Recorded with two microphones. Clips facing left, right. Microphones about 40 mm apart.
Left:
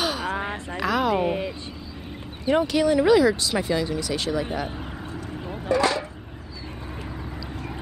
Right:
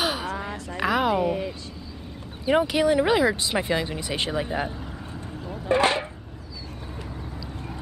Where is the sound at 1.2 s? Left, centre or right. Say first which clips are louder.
Even; left.